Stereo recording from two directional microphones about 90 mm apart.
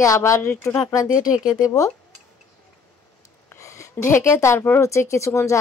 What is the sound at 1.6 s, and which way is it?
Speech, 40° left (ahead or behind).